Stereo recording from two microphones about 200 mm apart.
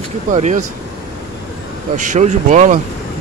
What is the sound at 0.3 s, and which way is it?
Speech, 35° right (ahead or behind).